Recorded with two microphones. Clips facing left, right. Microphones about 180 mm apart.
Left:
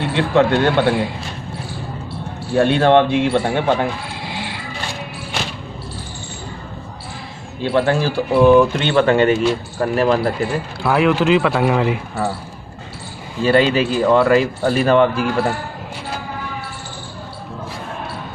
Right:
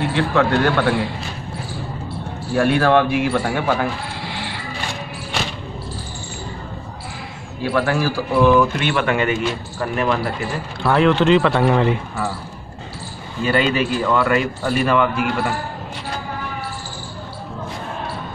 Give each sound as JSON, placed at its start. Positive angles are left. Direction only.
{"t": 0.0, "sound": "speech", "side_deg": 20}
{"t": 2.5, "sound": "speech", "side_deg": 25}
{"t": 7.6, "sound": "speech", "side_deg": 25}
{"t": 10.8, "sound": "a man's voice", "side_deg": 5}
{"t": 13.4, "sound": "speech", "side_deg": 30}